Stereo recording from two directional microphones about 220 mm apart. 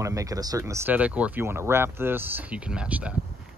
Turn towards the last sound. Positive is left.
turn(degrees=-5)  # may be behind; listen again after turning